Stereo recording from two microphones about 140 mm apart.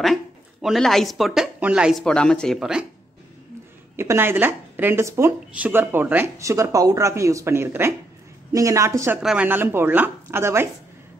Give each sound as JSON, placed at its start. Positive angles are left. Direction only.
{"t": 0.0, "sound": "speech", "side_deg": 0}
{"t": 2.0, "sound": "speech", "side_deg": 5}
{"t": 3.9, "sound": "speech", "side_deg": -20}
{"t": 9.2, "sound": "speech", "side_deg": -10}